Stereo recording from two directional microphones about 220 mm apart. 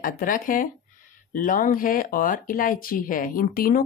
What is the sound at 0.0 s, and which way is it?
A woman's voice, 40° left (ahead or behind).